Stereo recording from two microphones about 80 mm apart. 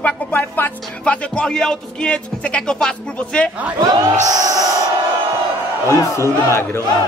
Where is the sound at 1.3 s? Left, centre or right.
Centre.